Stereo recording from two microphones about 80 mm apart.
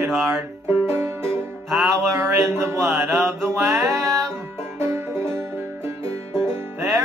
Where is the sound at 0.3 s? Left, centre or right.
Right.